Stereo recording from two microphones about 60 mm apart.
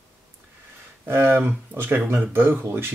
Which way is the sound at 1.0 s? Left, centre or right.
Right.